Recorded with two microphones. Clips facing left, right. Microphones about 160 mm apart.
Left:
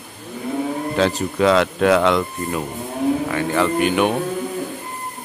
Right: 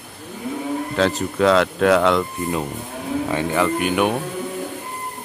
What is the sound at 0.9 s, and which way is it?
Speech, 5° left (ahead or behind).